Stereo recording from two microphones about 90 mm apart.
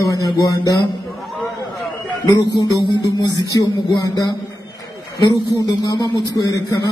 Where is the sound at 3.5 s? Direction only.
40° left (ahead or behind).